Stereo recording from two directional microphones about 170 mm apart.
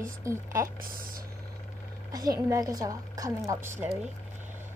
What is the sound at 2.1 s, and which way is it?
A woman's voice, 20° right (ahead or behind).